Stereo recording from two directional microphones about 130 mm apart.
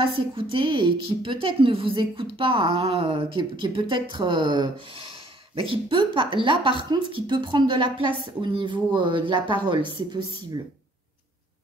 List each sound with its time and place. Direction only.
0.0 s speech: 40° right (ahead or behind)